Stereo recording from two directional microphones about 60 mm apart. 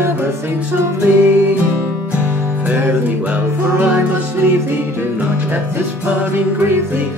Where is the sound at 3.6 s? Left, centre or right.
Right.